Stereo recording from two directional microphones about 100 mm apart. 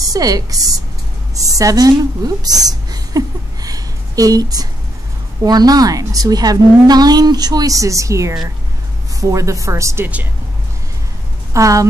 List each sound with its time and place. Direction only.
0.0 s a woman's voice: 35° right (ahead or behind)
11.5 s a woman's voice: 35° right (ahead or behind)